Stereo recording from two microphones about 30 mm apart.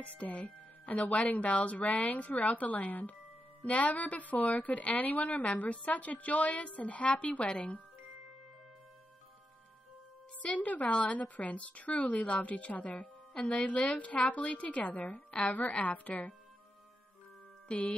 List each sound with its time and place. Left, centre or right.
0.2 s a woman's voice: left
3.6 s a woman's voice: left
10.4 s a woman's voice: left
13.3 s a woman's voice: left
13.9 s a woman's voice: left
15.0 s a woman's voice: left
17.6 s music: left